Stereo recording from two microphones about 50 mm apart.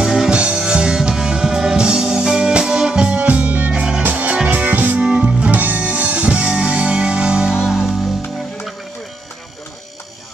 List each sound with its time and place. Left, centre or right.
0.0 s music: centre
0.3 s music: centre
4.9 s music: right
7.6 s music: centre